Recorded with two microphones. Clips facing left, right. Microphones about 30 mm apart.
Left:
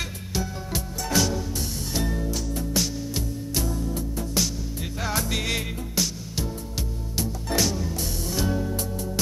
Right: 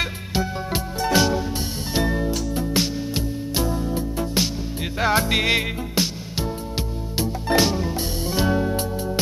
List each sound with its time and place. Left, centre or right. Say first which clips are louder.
0.3 s music: right 5 dB; right
7.2 s music: right 6 dB; right